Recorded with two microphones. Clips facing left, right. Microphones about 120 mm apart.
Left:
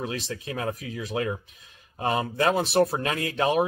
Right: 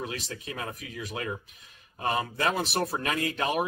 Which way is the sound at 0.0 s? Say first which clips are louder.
Left 4 dB; 30° left (ahead or behind).